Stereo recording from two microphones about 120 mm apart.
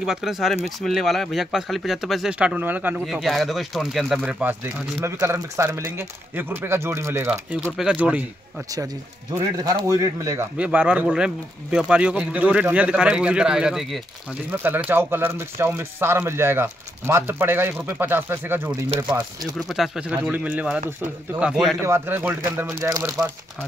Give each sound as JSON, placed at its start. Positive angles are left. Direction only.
{"t": 0.0, "sound": "speech", "side_deg": -5}
{"t": 3.1, "sound": "speech", "side_deg": 0}
{"t": 7.7, "sound": "speech", "side_deg": -10}
{"t": 9.3, "sound": "speech", "side_deg": -30}
{"t": 10.6, "sound": "speech", "side_deg": -10}
{"t": 14.5, "sound": "speech", "side_deg": -15}
{"t": 19.7, "sound": "speech", "side_deg": -5}
{"t": 21.8, "sound": "speech", "side_deg": -20}